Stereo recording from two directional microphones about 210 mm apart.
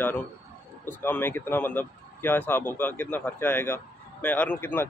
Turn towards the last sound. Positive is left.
turn(degrees=10)  # may be behind; listen again after turning